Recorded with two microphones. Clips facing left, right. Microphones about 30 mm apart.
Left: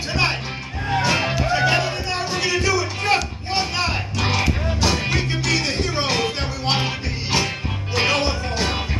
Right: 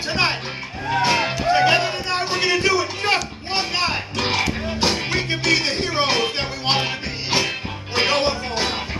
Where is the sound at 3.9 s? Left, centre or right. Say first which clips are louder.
Right 1 dB; right.